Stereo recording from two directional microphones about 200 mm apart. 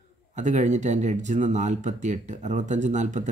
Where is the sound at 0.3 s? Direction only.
35° right (ahead or behind).